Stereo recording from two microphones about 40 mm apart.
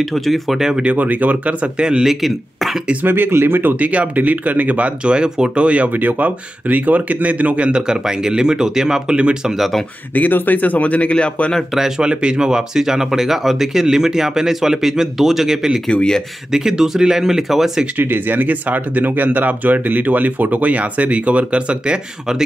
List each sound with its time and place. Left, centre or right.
0.0 s speech: centre
0.6 s speech: centre
0.9 s speech: right
1.8 s a man's voice: centre
2.0 s speech: centre
3.1 s speech: right
3.8 s speech: right
5.9 s speech: right
7.8 s speech: centre
10.1 s speech: left
12.0 s speech: right; by 17.8 s centre
17.9 s speech: right